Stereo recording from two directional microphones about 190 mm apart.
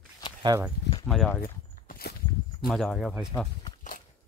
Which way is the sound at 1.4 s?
50° left (ahead or behind).